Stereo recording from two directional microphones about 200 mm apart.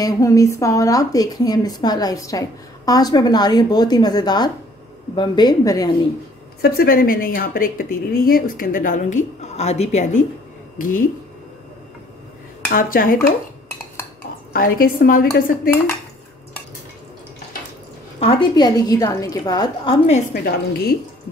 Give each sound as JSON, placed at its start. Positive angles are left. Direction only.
{"t": 0.0, "sound": "a woman's voice", "side_deg": 15}
{"t": 6.6, "sound": "a woman's voice", "side_deg": 50}
{"t": 12.7, "sound": "a woman's voice", "side_deg": 45}
{"t": 14.5, "sound": "a woman's voice", "side_deg": 45}
{"t": 18.2, "sound": "a woman's voice", "side_deg": 25}
{"t": 20.4, "sound": "a woman's voice", "side_deg": 50}